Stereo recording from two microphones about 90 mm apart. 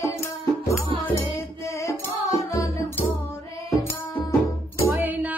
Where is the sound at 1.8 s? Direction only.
35° left (ahead or behind).